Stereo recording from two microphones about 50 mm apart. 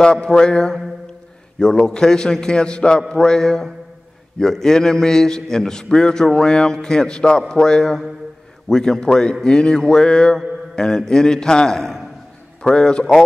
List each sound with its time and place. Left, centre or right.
0.0 s a man's voice: centre